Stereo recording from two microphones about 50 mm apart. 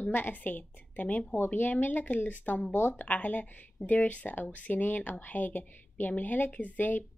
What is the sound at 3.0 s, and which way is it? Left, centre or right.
A woman's voice, left.